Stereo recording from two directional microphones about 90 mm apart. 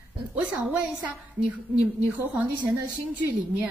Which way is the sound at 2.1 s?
20° right (ahead or behind).